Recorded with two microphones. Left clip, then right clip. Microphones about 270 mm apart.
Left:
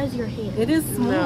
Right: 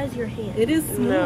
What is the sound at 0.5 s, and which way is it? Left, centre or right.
Speech, centre.